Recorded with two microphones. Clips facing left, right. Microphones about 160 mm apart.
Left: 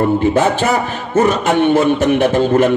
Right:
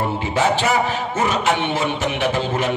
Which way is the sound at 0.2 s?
50° left (ahead or behind).